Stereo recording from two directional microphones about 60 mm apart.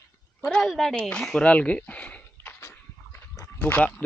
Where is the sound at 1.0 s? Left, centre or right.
Centre.